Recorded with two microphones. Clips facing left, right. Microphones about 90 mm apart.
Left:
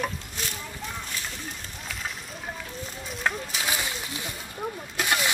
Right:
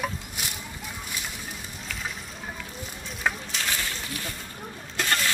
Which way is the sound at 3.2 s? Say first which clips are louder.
Even; 5° left (ahead or behind).